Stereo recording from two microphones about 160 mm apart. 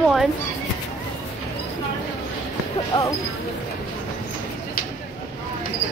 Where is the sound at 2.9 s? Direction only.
30° left (ahead or behind).